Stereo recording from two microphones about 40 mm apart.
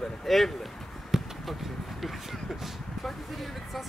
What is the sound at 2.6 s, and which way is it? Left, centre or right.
Speech, centre.